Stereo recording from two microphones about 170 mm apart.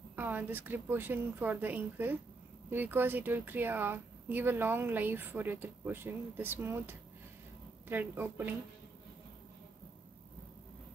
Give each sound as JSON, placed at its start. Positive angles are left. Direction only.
{"t": 0.1, "sound": "speech", "side_deg": -10}